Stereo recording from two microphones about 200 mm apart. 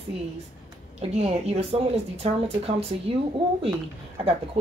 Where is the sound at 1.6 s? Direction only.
30° right (ahead or behind).